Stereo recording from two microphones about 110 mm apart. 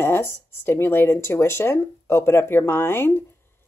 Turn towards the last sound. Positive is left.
turn(degrees=20)  # may be behind; listen again after turning